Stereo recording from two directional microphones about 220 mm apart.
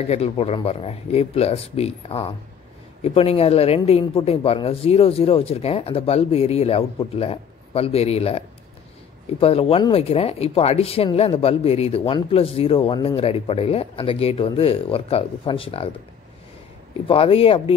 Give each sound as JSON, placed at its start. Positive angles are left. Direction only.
{"t": 0.1, "sound": "speech", "side_deg": 25}
{"t": 17.1, "sound": "speech", "side_deg": 25}